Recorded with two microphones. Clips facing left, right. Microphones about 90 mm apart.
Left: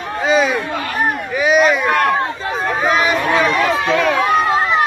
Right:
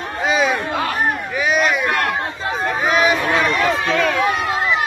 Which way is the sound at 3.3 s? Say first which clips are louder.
Left 2 dB; centre (ahead or behind).